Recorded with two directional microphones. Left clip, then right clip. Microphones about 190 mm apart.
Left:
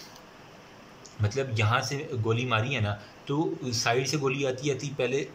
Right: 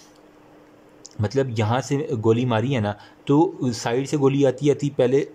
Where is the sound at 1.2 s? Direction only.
30° right (ahead or behind).